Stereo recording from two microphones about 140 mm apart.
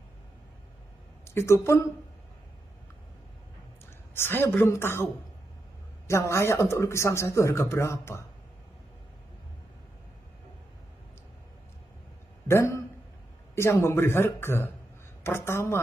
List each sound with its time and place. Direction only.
1.2 s speech: 20° left (ahead or behind)
4.1 s speech: 15° left (ahead or behind)
6.0 s speech: 20° left (ahead or behind)
12.4 s a man's voice: 20° left (ahead or behind)